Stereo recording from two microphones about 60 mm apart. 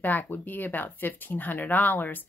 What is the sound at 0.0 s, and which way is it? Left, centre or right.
Speech, left.